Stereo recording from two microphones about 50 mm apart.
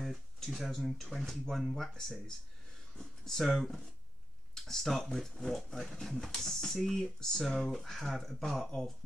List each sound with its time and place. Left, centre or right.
0.0 s speech: centre